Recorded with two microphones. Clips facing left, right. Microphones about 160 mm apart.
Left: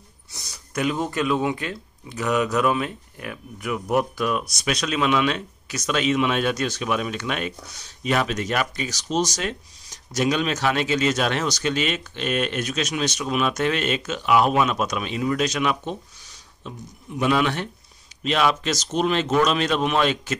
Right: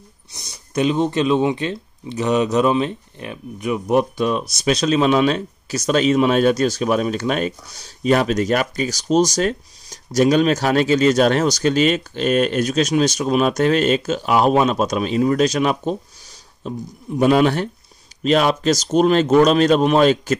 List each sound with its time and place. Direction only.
0.3 s speech: 20° right (ahead or behind); by 20.3 s 40° right (ahead or behind)